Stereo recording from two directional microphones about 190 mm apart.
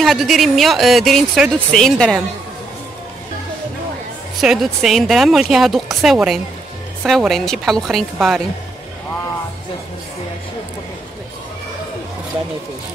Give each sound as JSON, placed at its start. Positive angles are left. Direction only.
{"t": 0.0, "sound": "a woman's voice", "side_deg": 0}
{"t": 4.4, "sound": "a woman's voice", "side_deg": 0}